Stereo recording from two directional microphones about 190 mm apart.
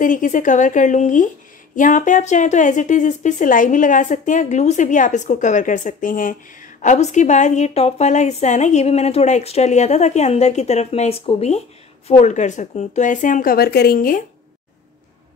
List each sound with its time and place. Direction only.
0.0 s a woman's voice: 45° left (ahead or behind)